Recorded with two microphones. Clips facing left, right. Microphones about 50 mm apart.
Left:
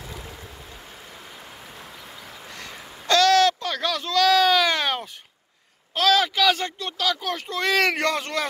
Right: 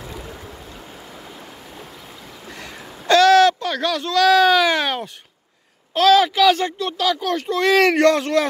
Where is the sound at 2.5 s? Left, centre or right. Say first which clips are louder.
Right 4 dB; centre.